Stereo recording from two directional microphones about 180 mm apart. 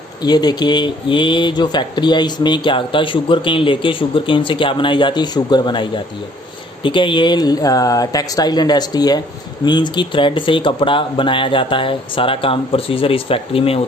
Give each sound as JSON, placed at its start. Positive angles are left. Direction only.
{"t": 0.2, "sound": "speech", "side_deg": 25}